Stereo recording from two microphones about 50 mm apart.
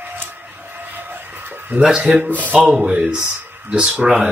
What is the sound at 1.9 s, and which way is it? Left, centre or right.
Speech, centre.